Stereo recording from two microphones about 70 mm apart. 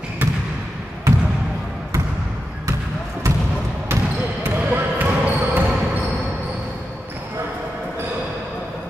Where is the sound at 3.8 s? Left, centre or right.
Right.